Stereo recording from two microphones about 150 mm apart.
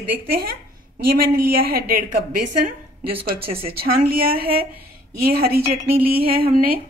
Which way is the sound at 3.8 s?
85° right.